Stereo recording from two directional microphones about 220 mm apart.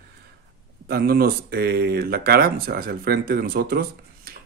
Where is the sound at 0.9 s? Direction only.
45° right (ahead or behind).